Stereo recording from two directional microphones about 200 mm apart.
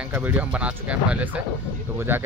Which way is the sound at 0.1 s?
10° right (ahead or behind).